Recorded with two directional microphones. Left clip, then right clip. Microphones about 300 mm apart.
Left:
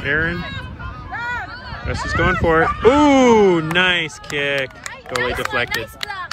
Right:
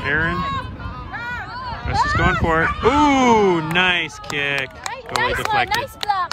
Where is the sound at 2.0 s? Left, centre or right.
Centre.